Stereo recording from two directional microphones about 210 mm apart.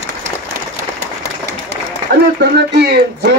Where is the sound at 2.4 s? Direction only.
50° right (ahead or behind).